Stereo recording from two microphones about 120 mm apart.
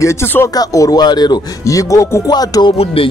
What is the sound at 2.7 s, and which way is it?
Speech, 55° left (ahead or behind).